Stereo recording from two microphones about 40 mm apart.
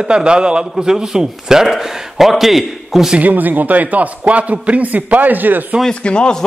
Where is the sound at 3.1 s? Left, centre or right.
Right.